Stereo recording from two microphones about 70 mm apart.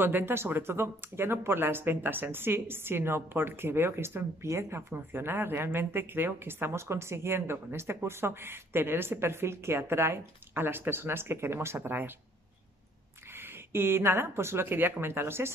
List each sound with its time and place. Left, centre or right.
0.0 s speech: right
13.3 s speech: right